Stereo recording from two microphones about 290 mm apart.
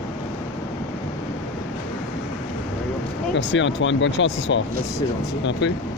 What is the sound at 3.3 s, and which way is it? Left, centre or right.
Speech, left.